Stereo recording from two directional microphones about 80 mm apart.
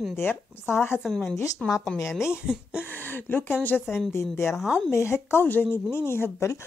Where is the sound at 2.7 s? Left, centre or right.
Left.